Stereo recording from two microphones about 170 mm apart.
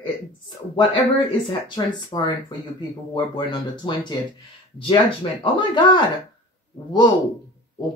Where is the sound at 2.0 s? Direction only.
25° left (ahead or behind).